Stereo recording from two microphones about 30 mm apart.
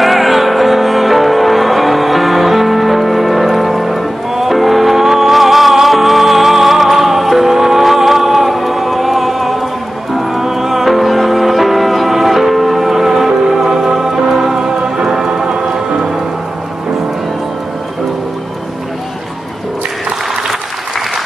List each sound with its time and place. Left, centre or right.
0.0 s music: centre; by 16.1 s right